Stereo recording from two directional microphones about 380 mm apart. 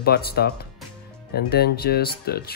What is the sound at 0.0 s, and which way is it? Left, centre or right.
Speech, left.